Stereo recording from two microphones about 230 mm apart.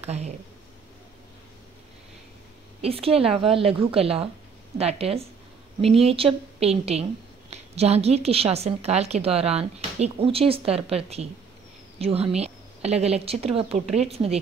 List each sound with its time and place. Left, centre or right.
0.0 s speech: right
2.8 s a woman's voice: right